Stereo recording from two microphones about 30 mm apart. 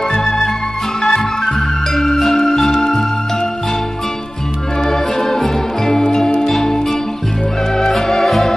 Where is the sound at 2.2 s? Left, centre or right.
Centre.